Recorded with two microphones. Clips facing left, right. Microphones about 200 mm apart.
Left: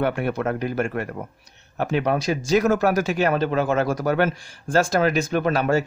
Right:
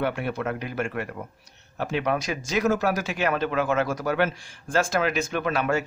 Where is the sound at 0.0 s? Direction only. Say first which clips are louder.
Left 4 dB; 50° left (ahead or behind).